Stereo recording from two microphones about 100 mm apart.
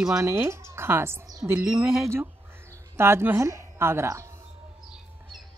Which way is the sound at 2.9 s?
25° right (ahead or behind).